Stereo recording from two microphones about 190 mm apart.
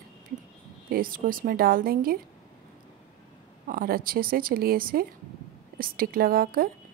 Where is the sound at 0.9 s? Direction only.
50° right (ahead or behind).